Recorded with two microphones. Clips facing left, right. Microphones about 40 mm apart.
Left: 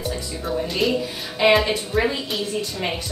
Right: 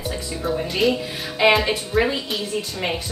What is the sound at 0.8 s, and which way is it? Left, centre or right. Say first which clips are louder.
A woman's voice: right 3 dB; centre.